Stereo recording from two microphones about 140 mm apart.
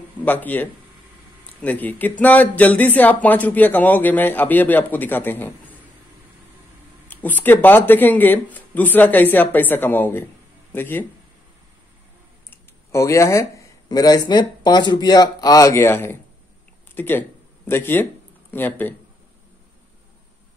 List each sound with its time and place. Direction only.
0.2 s speech: 10° left (ahead or behind)
7.1 s speech: 10° left (ahead or behind)
12.4 s speech: 20° left (ahead or behind)